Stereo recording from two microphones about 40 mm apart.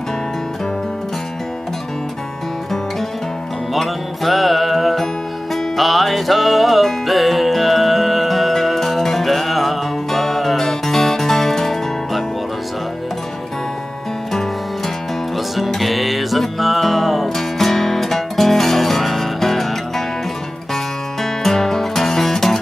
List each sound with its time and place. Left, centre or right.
3.7 s music: centre
15.3 s music: centre